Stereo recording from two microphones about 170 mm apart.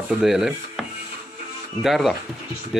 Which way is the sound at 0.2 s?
5° right (ahead or behind).